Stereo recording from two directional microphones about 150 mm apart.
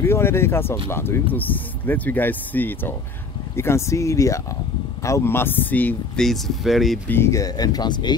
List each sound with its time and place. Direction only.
0.0 s speech: 15° left (ahead or behind); by 7.0 s centre (ahead or behind)
7.1 s speech: 15° left (ahead or behind)